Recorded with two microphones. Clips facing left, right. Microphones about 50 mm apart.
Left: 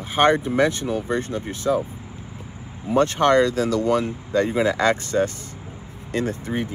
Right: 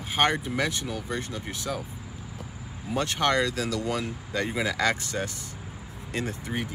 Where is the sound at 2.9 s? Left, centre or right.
Left.